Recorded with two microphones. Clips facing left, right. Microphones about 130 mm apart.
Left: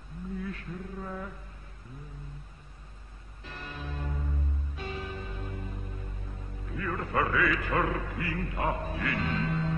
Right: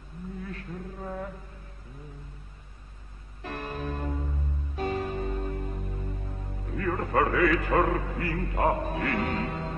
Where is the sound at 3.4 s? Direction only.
55° right (ahead or behind).